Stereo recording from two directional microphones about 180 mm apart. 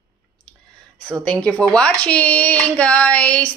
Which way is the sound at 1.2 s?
5° left (ahead or behind).